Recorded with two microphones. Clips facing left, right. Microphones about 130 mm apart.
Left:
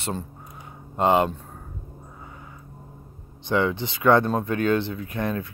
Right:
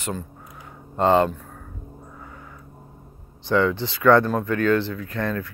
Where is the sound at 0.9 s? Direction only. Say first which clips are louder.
Right 2 dB; 15° left (ahead or behind).